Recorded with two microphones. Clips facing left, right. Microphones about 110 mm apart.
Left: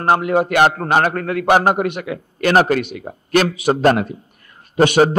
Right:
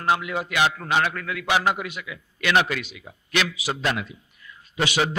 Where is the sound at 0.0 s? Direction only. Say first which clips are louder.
Left 9 dB; 45° left (ahead or behind).